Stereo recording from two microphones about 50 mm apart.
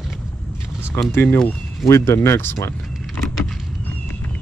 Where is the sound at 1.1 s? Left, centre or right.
Left.